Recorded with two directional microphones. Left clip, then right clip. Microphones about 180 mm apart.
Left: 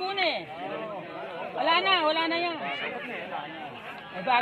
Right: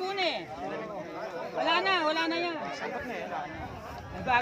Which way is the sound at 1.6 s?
35° left (ahead or behind).